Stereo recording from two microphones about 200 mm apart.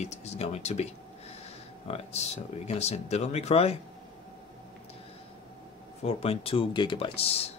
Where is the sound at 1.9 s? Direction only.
30° left (ahead or behind).